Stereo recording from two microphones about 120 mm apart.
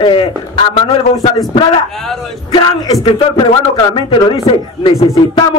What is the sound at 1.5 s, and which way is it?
Speech, 45° left (ahead or behind).